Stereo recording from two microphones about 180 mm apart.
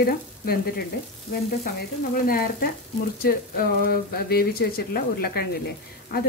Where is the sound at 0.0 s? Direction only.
55° left (ahead or behind).